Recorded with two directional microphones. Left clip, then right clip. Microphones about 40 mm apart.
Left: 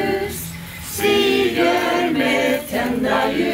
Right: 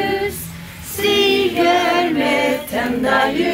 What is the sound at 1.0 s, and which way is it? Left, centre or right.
Child singing, right.